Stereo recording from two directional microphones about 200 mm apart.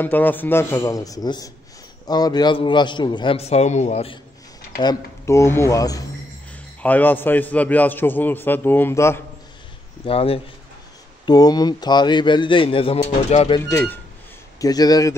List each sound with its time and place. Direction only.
0.0 s a man's voice: 10° left (ahead or behind); by 4.2 s 30° left (ahead or behind)
4.7 s a man's voice: 15° left (ahead or behind)
10.0 s speech: 30° left (ahead or behind)
13.6 s a man's voice: 10° left (ahead or behind)